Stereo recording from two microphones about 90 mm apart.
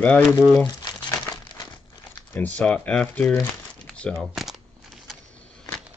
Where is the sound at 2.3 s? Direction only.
15° left (ahead or behind).